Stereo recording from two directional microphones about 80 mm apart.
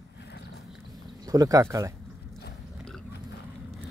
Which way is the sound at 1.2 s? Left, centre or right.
Right.